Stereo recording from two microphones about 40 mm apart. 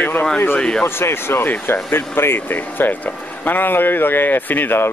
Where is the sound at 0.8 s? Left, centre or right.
Left.